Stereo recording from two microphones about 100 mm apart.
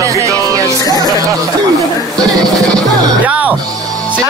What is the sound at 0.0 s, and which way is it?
Music, 30° right (ahead or behind).